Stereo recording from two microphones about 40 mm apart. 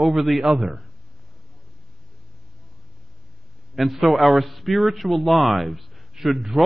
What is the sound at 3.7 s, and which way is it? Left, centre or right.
Speech, centre.